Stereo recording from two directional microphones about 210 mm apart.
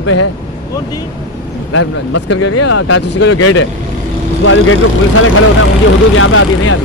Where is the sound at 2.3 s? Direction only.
90° left.